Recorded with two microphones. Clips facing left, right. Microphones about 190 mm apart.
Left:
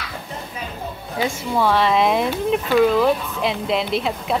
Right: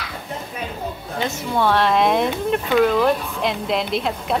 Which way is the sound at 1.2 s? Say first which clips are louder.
Left 1 dB; centre (ahead or behind).